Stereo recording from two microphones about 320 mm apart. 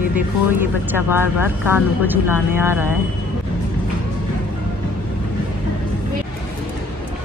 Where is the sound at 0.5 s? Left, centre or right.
Centre.